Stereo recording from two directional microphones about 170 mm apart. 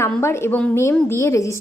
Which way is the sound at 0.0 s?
15° left (ahead or behind).